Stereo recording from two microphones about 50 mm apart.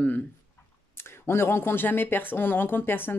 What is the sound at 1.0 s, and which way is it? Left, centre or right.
Speech, left.